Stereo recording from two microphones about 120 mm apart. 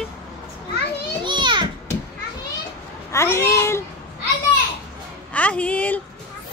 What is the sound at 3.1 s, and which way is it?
Speech, 25° left (ahead or behind).